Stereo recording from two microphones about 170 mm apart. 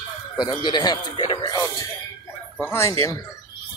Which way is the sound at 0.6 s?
25° left (ahead or behind).